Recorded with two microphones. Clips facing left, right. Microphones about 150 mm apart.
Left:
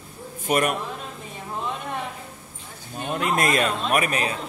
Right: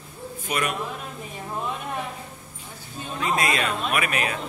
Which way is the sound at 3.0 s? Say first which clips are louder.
Left 2 dB; 65° left (ahead or behind).